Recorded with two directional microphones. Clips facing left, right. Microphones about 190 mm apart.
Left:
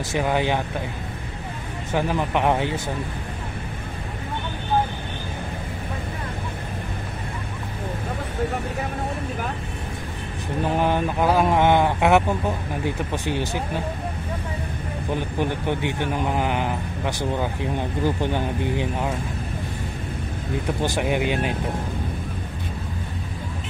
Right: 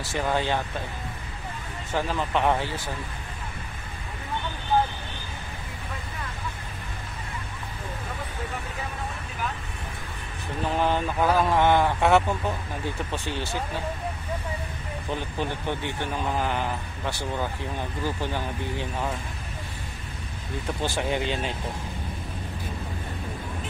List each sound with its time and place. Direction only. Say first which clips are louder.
0.0 s speech: left 4 dB; 15° left (ahead or behind)
1.9 s speech: left 4 dB; 15° left (ahead or behind)
10.8 s speech: left 1 dB; 15° left (ahead or behind)
15.1 s speech: left 6 dB; 15° left (ahead or behind)
20.8 s speech: left 3 dB; 15° left (ahead or behind)